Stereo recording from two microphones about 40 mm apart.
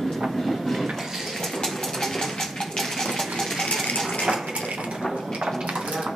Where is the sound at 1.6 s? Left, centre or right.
Centre.